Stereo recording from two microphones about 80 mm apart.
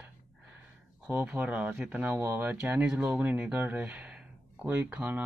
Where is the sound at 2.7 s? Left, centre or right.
Centre.